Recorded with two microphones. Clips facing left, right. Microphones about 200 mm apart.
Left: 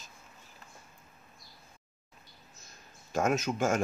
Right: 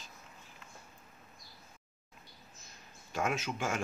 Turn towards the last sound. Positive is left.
turn(degrees=45)  # may be behind; listen again after turning